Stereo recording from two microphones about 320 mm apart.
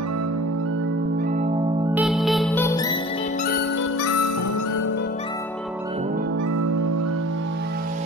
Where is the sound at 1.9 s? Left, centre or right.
Centre.